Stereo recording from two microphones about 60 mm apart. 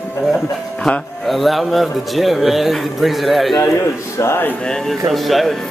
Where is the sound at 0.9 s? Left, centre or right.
Centre.